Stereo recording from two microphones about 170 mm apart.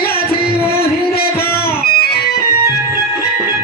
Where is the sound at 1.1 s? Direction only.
65° left (ahead or behind).